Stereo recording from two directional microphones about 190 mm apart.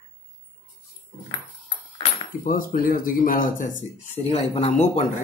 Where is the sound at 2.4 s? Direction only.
50° left (ahead or behind).